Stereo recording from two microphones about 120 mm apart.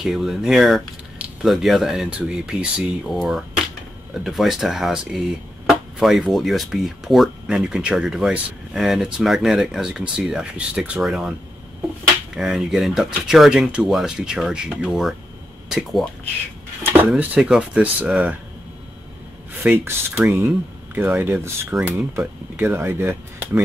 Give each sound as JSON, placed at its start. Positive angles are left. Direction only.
{"t": 0.0, "sound": "speech", "side_deg": -5}
{"t": 12.4, "sound": "speech", "side_deg": -5}
{"t": 17.0, "sound": "speech", "side_deg": -15}
{"t": 19.5, "sound": "speech", "side_deg": -15}